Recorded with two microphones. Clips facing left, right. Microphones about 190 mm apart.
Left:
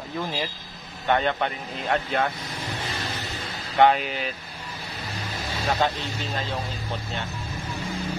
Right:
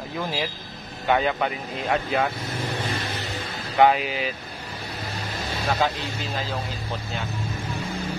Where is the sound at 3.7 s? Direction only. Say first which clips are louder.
Right 1 dB; 5° right (ahead or behind).